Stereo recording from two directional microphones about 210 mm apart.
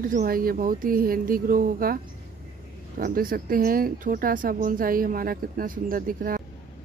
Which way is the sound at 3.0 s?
40° right (ahead or behind).